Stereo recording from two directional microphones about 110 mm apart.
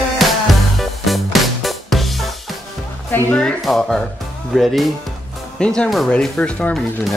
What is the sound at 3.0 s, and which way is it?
Music, 20° left (ahead or behind).